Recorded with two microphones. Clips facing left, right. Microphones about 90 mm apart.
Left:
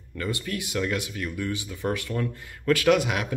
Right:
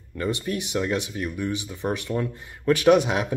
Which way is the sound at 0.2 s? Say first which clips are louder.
Right 4 dB; 25° right (ahead or behind).